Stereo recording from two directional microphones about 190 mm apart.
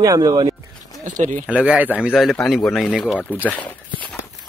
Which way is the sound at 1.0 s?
40° right (ahead or behind).